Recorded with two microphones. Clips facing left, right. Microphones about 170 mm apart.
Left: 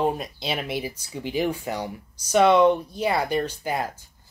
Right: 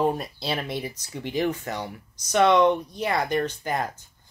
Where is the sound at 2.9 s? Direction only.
30° left (ahead or behind).